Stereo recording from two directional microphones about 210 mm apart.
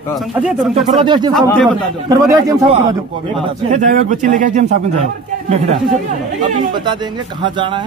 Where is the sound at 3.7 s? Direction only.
35° right (ahead or behind).